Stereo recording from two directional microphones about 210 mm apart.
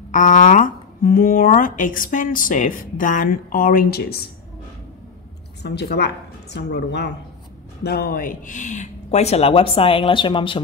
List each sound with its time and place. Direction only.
0.1 s speech: 40° left (ahead or behind)
5.6 s speech: 55° left (ahead or behind); by 10.6 s 25° left (ahead or behind)